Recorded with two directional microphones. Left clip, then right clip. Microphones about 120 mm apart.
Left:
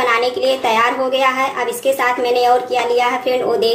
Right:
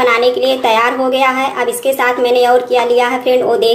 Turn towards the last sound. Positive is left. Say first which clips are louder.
# right 4 dB
turn(degrees=-20)  # may be behind; listen again after turning